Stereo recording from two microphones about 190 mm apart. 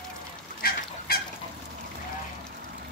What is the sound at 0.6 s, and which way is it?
Goose, 50° left (ahead or behind).